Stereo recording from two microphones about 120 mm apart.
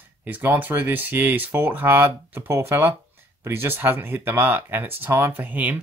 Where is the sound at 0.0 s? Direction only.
15° right (ahead or behind).